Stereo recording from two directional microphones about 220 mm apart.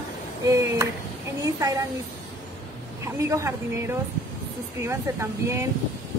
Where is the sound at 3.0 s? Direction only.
15° right (ahead or behind).